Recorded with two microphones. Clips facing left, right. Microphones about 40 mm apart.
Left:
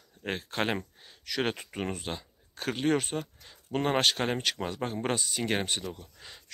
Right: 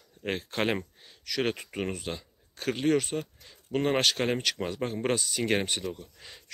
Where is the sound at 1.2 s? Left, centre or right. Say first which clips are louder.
Right 1 dB; centre.